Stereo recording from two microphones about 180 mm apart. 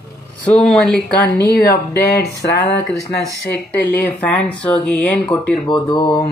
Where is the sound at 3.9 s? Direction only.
10° left (ahead or behind).